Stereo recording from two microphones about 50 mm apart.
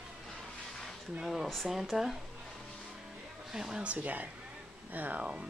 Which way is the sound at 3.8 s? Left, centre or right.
Right.